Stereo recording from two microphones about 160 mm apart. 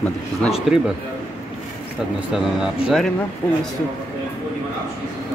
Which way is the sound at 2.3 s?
Centre (ahead or behind).